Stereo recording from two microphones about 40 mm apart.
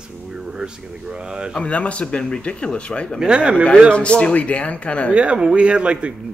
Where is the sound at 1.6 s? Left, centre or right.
Left.